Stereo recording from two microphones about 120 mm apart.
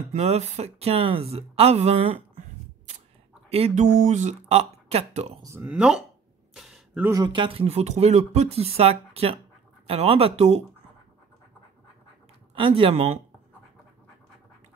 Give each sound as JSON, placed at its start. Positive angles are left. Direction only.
{"t": 0.1, "sound": "speech", "side_deg": -65}
{"t": 3.4, "sound": "speech", "side_deg": -60}
{"t": 5.4, "sound": "speech", "side_deg": -20}
{"t": 6.5, "sound": "a sound", "side_deg": -5}
{"t": 7.3, "sound": "speech", "side_deg": -50}
{"t": 12.5, "sound": "speech", "side_deg": -50}